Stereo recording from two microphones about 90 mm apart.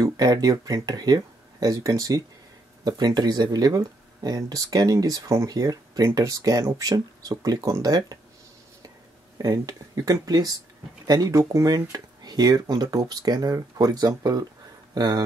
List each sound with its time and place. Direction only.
0.0 s speech: 45° right (ahead or behind)
9.4 s speech: 45° right (ahead or behind)
11.9 s speech: 50° right (ahead or behind)